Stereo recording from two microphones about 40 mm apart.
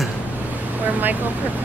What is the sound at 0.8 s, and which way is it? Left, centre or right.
Speech, right.